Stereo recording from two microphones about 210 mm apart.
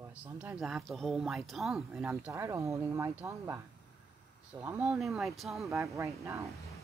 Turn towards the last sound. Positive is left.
turn(degrees=-15)  # may be behind; listen again after turning